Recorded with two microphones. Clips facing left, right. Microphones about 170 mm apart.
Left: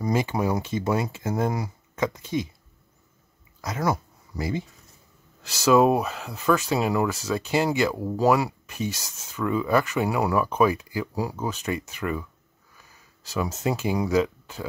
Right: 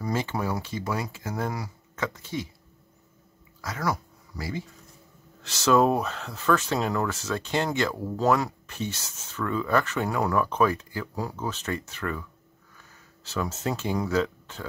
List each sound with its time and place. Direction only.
0.0 s speech: 15° left (ahead or behind)
3.6 s speech: 20° left (ahead or behind)
5.4 s speech: 10° left (ahead or behind)